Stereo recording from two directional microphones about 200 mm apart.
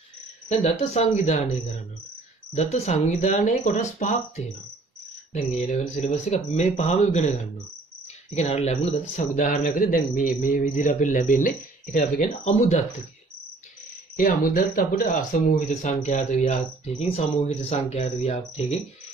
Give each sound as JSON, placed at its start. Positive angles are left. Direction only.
{"t": 0.5, "sound": "a man's voice", "side_deg": 35}
{"t": 2.5, "sound": "a man's voice", "side_deg": 35}
{"t": 5.3, "sound": "a man's voice", "side_deg": 35}
{"t": 8.4, "sound": "a man's voice", "side_deg": 35}
{"t": 14.1, "sound": "a man's voice", "side_deg": 40}